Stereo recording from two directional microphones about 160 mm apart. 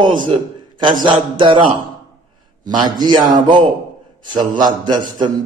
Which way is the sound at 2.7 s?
25° right (ahead or behind).